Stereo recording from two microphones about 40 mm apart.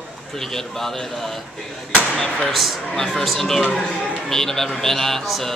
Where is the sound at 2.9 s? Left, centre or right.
Centre.